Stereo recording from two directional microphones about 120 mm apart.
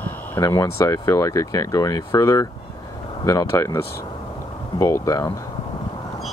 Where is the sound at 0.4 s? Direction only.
30° left (ahead or behind).